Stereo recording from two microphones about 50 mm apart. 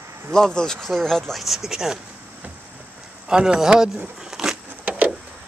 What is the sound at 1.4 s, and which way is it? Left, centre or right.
Speech, centre.